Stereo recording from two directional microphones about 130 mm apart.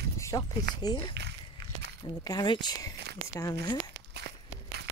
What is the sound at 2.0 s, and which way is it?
Speech, 30° left (ahead or behind).